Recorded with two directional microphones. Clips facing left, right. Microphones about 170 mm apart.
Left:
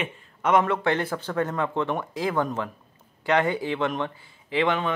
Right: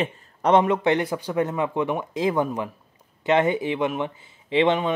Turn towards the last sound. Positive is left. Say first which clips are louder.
# right 4 dB
turn(degrees=-20)  # may be behind; listen again after turning